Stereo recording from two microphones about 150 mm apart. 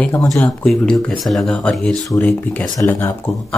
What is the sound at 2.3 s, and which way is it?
Speech, 10° left (ahead or behind).